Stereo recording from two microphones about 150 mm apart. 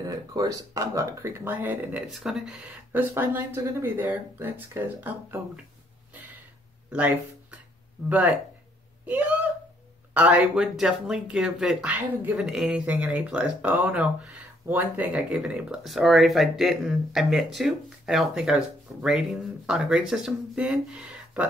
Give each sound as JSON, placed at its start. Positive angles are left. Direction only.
{"t": 0.0, "sound": "speech", "side_deg": -25}
{"t": 2.0, "sound": "speech", "side_deg": 0}
{"t": 6.9, "sound": "speech", "side_deg": -10}